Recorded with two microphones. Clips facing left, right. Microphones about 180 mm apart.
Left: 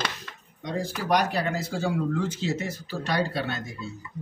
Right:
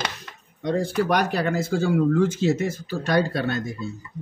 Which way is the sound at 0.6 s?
60° right (ahead or behind).